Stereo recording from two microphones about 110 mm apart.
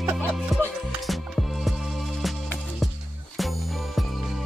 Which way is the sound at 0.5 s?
Centre (ahead or behind).